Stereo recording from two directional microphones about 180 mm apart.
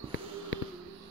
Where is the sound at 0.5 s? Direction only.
90° left.